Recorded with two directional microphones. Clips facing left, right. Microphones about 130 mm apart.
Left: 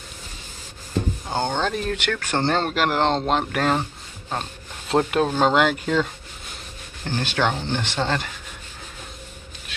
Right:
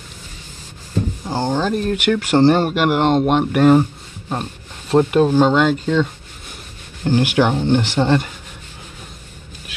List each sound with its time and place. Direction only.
1.2 s speech: 5° right (ahead or behind)
7.1 s speech: 15° right (ahead or behind)